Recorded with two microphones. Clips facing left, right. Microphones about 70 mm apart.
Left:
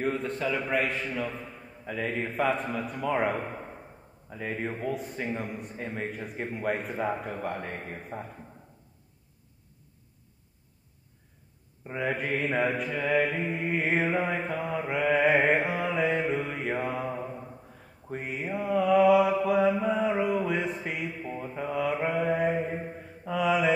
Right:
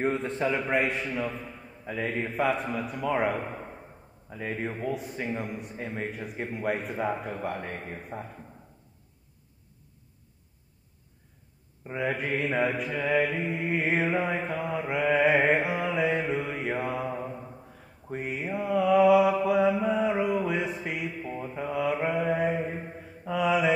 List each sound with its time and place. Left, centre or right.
0.0 s a man's voice: right; by 3.3 s centre
3.4 s a sound: centre
4.3 s a man's voice: centre
8.1 s speech: centre
11.9 s a man's voice: centre
14.9 s mantra: centre